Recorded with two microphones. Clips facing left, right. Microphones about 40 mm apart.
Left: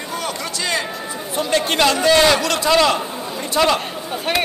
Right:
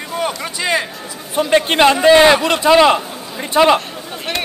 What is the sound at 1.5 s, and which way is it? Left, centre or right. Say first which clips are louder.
A man's voice: right 5 dB; right.